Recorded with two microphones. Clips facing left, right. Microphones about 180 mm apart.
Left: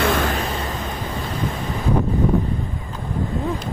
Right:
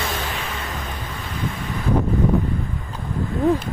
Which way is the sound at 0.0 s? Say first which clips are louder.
Left 8 dB; 55° left (ahead or behind).